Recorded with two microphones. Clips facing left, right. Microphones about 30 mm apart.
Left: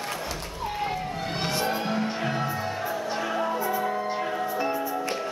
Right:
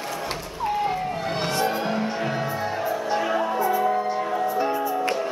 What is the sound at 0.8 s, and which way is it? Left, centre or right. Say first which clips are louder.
Music: right 4 dB; centre.